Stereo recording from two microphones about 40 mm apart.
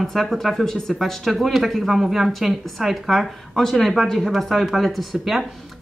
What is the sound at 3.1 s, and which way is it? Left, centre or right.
Speech, centre.